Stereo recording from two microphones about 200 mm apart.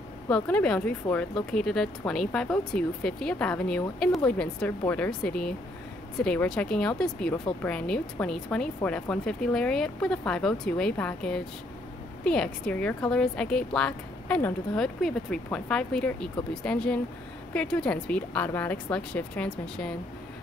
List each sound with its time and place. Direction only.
0.3 s a woman's voice: 5° left (ahead or behind)